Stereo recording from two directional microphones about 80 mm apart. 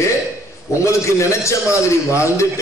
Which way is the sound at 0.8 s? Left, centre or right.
Left.